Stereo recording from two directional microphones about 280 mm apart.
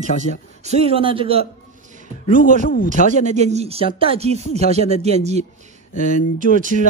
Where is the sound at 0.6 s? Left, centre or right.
Right.